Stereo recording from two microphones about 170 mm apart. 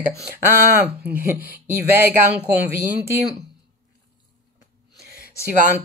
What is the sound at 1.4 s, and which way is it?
Speech, 60° right (ahead or behind).